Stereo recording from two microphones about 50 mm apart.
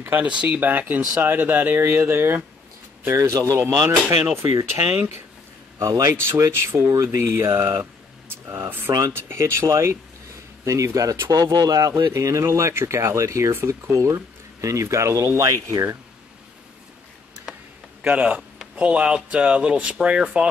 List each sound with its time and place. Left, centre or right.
0.2 s speech: right
0.6 s speech: right
1.8 s speech: right
3.1 s speech: right
5.8 s speech: right
7.0 s speech: right
9.0 s speech: right
10.6 s speech: right
13.7 s speech: right
18.0 s speech: right